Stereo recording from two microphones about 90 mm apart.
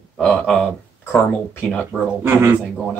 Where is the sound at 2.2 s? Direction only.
30° right (ahead or behind).